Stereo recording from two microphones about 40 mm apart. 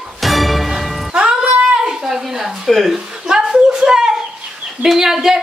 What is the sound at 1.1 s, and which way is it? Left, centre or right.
Music, right.